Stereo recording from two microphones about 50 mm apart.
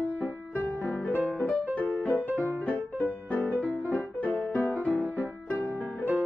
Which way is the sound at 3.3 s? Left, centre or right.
Left.